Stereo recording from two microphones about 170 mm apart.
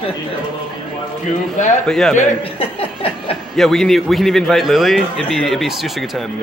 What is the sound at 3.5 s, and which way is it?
A man's voice, centre (ahead or behind).